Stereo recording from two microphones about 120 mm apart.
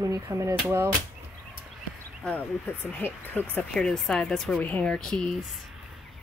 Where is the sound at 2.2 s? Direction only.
15° left (ahead or behind).